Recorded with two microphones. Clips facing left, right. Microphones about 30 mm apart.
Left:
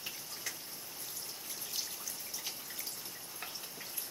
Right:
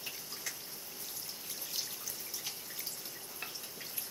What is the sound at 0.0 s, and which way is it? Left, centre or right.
Water, centre.